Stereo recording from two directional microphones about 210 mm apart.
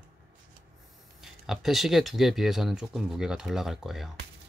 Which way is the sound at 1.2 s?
Centre (ahead or behind).